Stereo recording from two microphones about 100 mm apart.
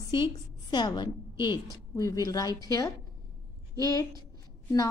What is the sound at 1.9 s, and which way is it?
A woman's voice, 35° left (ahead or behind).